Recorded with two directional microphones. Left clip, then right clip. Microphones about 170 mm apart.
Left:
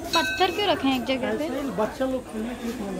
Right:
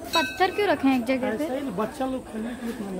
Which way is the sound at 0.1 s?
35° right (ahead or behind).